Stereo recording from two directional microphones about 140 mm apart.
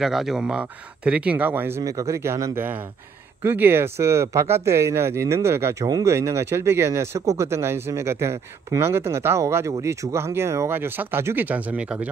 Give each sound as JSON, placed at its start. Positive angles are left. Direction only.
{"t": 0.0, "sound": "speech", "side_deg": 0}